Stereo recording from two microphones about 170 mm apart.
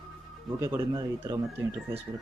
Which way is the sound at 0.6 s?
20° right (ahead or behind).